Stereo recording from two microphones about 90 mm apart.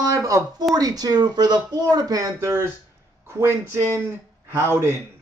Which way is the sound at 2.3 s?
30° right (ahead or behind).